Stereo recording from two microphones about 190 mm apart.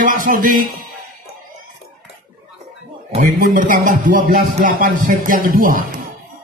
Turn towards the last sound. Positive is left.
turn(degrees=-50)  # may be behind; listen again after turning